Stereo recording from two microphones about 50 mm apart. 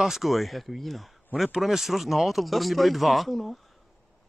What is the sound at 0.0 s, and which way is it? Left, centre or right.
Speech, centre.